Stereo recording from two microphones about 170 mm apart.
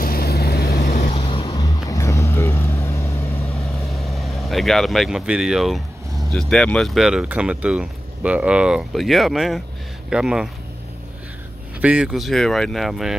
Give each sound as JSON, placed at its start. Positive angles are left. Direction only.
{"t": 0.0, "sound": "vehicle", "side_deg": 60}
{"t": 0.9, "sound": "vehicle", "side_deg": 45}
{"t": 3.9, "sound": "speech", "side_deg": 0}
{"t": 11.8, "sound": "speech", "side_deg": -5}